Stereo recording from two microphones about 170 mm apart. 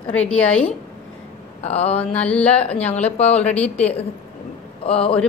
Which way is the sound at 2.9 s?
40° left (ahead or behind).